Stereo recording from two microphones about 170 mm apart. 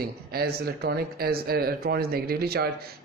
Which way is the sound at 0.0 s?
65° right (ahead or behind).